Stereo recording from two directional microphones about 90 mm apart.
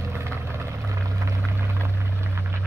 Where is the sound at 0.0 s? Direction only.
30° right (ahead or behind).